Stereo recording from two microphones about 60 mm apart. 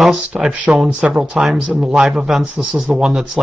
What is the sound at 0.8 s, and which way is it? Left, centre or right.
Speech, right.